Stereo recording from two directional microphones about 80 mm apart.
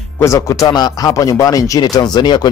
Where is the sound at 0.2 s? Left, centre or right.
Left.